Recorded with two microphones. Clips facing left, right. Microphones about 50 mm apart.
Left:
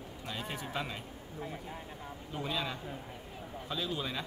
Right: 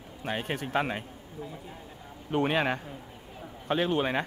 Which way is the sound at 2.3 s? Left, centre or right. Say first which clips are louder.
Right 11 dB; right.